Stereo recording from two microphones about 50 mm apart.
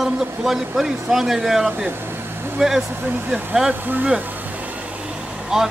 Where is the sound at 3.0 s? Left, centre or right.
Right.